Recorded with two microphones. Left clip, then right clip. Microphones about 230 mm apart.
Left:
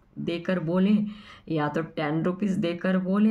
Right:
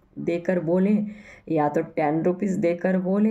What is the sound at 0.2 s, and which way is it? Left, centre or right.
Speech, centre.